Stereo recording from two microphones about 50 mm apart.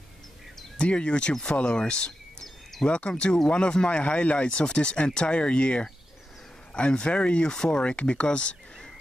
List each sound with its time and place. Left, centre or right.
0.7 s speech: left